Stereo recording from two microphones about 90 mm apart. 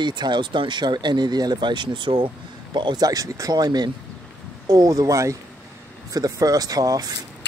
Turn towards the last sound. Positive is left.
turn(degrees=-40)  # may be behind; listen again after turning